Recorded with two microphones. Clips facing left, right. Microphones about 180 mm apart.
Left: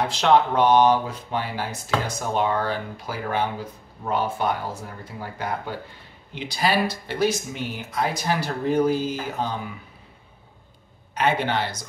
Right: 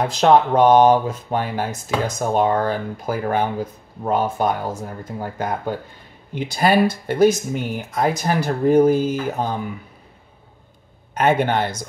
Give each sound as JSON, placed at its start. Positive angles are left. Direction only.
{"t": 0.0, "sound": "speech", "side_deg": -45}
{"t": 11.1, "sound": "speech", "side_deg": -50}